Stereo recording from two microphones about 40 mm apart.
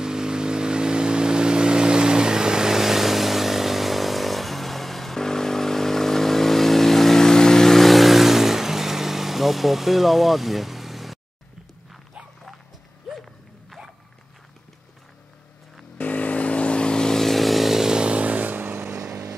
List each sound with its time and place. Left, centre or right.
0.0 s vehicle: centre
13.1 s a sound: centre
16.0 s vehicle: left; by 17.2 s centre
17.2 s chainsaw: centre
18.1 s vehicle: right